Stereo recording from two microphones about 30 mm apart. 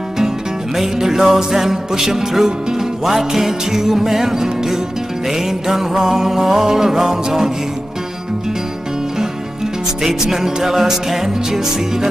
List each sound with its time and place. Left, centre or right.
0.7 s music: centre
10.3 s music: centre